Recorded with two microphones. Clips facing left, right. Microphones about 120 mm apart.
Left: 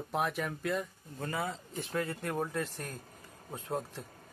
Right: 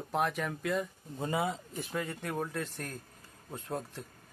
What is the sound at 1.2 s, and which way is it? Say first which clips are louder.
Speech: right 4 dB; 20° right (ahead or behind).